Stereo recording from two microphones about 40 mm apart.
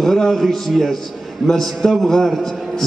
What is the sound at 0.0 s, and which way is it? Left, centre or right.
A man's voice, centre.